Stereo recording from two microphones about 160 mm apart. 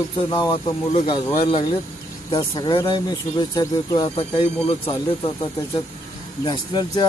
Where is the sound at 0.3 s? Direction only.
25° left (ahead or behind).